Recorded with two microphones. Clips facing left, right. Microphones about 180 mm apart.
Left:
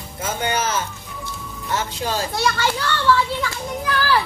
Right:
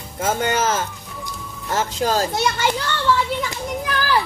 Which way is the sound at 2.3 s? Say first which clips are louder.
Right 1 dB; 20° right (ahead or behind).